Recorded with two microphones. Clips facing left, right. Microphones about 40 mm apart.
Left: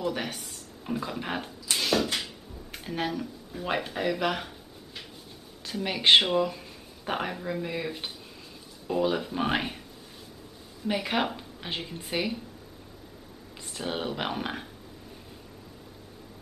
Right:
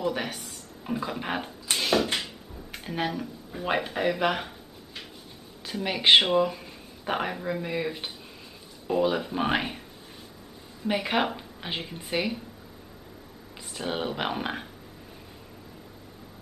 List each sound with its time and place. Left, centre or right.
0.0 s speech: centre
1.8 s a sound: centre
5.7 s a woman's voice: centre
10.9 s a woman's voice: centre
13.7 s a woman's voice: centre